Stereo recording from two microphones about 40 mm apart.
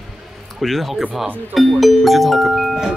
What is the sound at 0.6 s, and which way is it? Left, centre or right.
Speech, centre.